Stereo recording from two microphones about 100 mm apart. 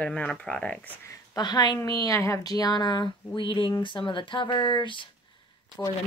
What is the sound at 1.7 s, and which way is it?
Speech, 35° left (ahead or behind).